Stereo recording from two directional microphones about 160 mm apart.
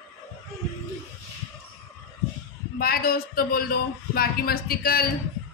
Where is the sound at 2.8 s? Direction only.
70° left (ahead or behind).